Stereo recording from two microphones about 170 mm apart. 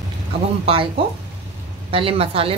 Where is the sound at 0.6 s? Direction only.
35° right (ahead or behind).